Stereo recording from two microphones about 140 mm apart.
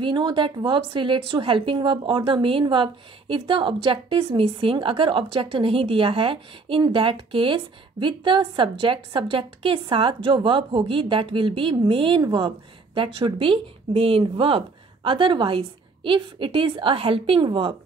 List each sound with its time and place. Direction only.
0.0 s a woman's voice: 35° right (ahead or behind)